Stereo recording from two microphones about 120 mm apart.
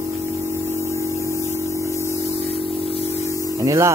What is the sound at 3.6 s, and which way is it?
Speech, 25° right (ahead or behind).